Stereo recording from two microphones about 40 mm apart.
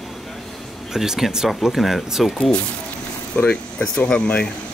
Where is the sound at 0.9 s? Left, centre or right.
Centre.